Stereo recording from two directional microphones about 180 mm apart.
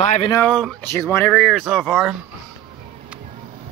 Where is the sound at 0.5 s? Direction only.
5° left (ahead or behind).